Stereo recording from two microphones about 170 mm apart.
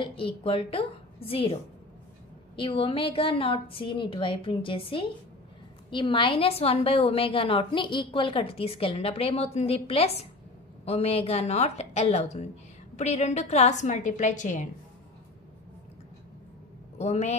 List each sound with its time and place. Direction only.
0.0 s a woman's voice: 30° left (ahead or behind); by 14.7 s 45° left (ahead or behind)
17.0 s a woman's voice: 40° left (ahead or behind)